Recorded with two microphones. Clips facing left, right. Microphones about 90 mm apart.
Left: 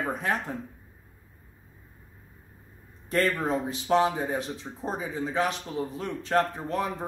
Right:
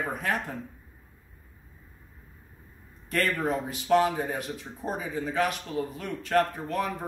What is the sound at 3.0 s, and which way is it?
Speech, 25° left (ahead or behind).